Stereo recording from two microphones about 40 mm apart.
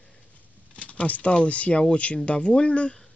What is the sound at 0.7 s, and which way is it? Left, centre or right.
Speech, left.